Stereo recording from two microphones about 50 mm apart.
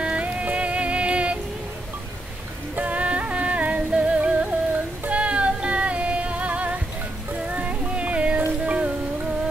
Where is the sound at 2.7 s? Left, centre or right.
Right.